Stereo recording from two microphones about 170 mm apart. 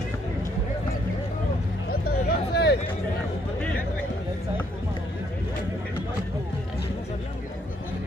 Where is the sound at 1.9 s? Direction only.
65° left (ahead or behind).